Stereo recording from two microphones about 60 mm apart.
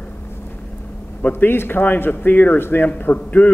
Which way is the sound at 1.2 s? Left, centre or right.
Left.